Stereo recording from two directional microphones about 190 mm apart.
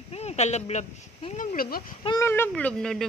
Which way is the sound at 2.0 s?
20° left (ahead or behind).